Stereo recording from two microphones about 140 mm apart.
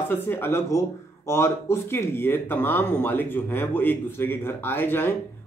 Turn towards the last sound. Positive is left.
turn(degrees=15)  # may be behind; listen again after turning